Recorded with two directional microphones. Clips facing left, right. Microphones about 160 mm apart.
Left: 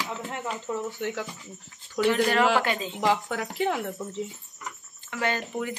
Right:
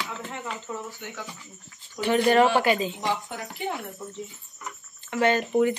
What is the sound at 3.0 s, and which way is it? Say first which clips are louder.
A woman's voice: left 4 dB; 90° left.